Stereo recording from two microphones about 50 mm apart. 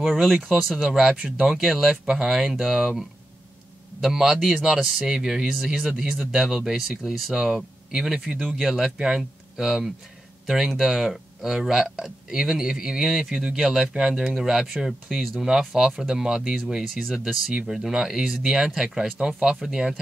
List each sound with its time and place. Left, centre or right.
0.0 s speech: centre
0.7 s speech: centre
4.0 s speech: centre